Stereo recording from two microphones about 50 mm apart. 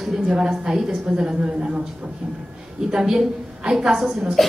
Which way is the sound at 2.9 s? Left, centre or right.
Centre.